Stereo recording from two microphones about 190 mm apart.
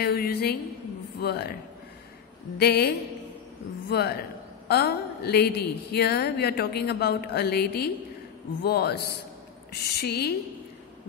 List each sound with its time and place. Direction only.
0.0 s a sound: 55° left (ahead or behind)
1.2 s a woman's voice: 55° left (ahead or behind)
2.6 s a woman's voice: 55° left (ahead or behind)